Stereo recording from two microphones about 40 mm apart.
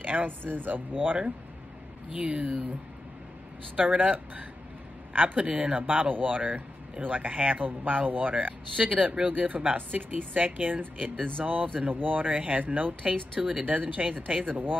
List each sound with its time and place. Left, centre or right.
0.0 s a sound: right
0.4 s speech: right
2.1 s speech: right
3.7 s speech: right
13.4 s speech: right